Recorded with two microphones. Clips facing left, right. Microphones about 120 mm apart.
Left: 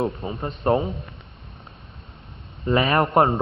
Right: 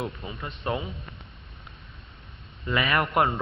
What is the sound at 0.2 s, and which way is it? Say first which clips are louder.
Speech: left 8 dB; 40° left (ahead or behind).